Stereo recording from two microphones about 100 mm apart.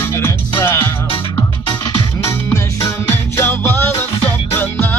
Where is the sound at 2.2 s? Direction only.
30° left (ahead or behind).